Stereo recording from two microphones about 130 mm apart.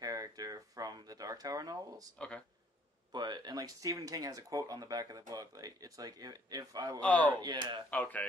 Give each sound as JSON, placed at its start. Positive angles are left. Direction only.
{"t": 0.0, "sound": "speech", "side_deg": -30}
{"t": 2.1, "sound": "speech", "side_deg": 10}
{"t": 3.1, "sound": "speech", "side_deg": -35}
{"t": 7.0, "sound": "speech", "side_deg": 10}